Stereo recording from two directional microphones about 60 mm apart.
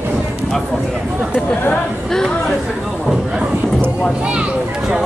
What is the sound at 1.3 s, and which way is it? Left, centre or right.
Chatter, left.